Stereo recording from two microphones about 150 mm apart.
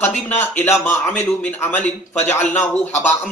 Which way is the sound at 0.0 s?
15° left (ahead or behind).